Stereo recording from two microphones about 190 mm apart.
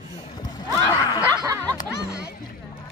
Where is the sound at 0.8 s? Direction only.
15° left (ahead or behind).